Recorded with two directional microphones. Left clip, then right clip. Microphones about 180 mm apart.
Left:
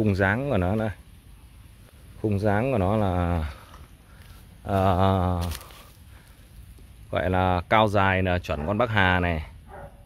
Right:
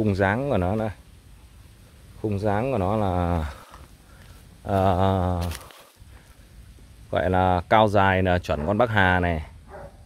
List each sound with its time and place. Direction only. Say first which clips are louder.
0.0 s speech: right 1 dB; 10° right (ahead or behind)
2.2 s speech: even; 5° left (ahead or behind)
3.2 s speech: right 2 dB; 15° right (ahead or behind)
3.4 s a sound: right 3 dB; 25° right (ahead or behind)
4.6 s speech: right 1 dB; 15° right (ahead or behind)
7.1 s speech: right 3 dB; 20° right (ahead or behind)